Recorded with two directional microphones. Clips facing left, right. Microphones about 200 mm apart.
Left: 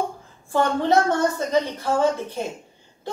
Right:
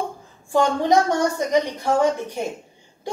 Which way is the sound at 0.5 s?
15° right (ahead or behind).